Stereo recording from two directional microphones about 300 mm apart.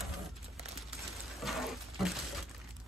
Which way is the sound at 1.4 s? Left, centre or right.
Centre.